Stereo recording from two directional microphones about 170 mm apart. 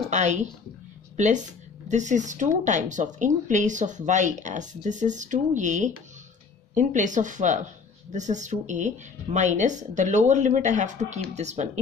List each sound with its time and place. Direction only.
0.1 s speech: 45° right (ahead or behind)